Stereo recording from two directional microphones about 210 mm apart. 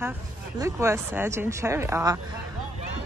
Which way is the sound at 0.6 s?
15° right (ahead or behind).